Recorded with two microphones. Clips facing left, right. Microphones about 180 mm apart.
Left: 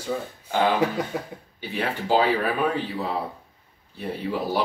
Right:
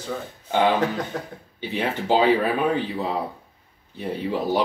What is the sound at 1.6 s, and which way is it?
Speech, 20° right (ahead or behind).